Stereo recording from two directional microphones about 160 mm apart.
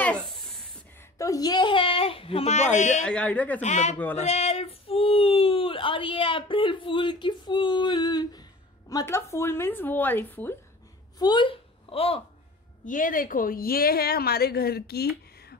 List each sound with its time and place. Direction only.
0.0 s a sound: 5° left (ahead or behind)
1.1 s a sound: 20° left (ahead or behind); by 3.0 s 45° left (ahead or behind)
3.1 s speech: 5° left (ahead or behind)
3.6 s speech: 45° left (ahead or behind); by 10.5 s 10° left (ahead or behind)
11.1 s speech: 25° left (ahead or behind)
12.8 s a woman's voice: 55° left (ahead or behind); by 15.5 s 80° left